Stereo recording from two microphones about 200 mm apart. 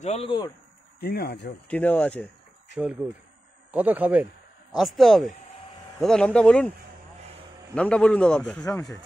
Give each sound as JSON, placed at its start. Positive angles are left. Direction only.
{"t": 0.0, "sound": "speech", "side_deg": 30}
{"t": 0.9, "sound": "speech", "side_deg": 50}
{"t": 1.7, "sound": "speech", "side_deg": 5}
{"t": 3.7, "sound": "speech", "side_deg": -10}
{"t": 7.7, "sound": "a man's voice", "side_deg": 5}